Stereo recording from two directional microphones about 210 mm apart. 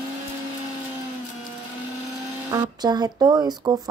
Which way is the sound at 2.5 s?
20° right (ahead or behind).